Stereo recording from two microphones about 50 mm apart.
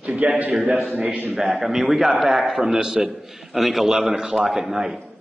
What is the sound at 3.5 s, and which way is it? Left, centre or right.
A man's voice, centre.